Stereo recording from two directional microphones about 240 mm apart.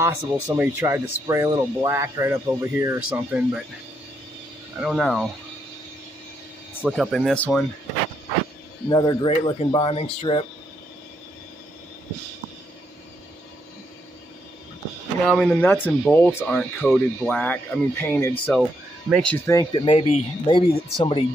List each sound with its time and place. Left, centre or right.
0.0 s speech: centre
4.7 s speech: centre
6.8 s speech: centre
8.8 s speech: centre
15.2 s speech: centre; by 21.3 s left